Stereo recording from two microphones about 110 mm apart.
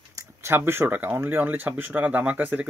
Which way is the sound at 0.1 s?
25° right (ahead or behind).